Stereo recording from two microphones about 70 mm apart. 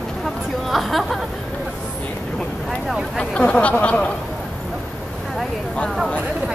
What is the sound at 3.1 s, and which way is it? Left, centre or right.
Speech, centre.